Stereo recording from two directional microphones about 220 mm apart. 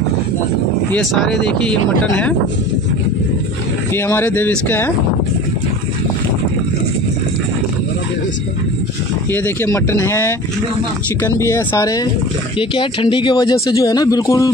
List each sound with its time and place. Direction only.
0.9 s speech: centre (ahead or behind)
3.9 s speech: 10° left (ahead or behind)
9.3 s speech: 10° left (ahead or behind)
11.3 s speech: 15° left (ahead or behind)